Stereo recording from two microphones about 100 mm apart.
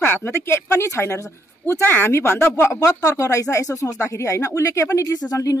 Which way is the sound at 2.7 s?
35° left (ahead or behind).